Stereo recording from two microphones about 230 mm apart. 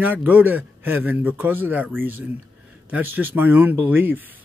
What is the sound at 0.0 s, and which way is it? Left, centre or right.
Speech, centre.